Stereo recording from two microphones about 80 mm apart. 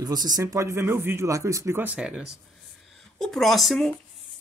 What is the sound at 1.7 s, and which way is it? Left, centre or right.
Speech, centre.